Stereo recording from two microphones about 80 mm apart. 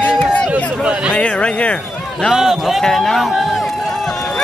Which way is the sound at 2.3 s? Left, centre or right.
Centre.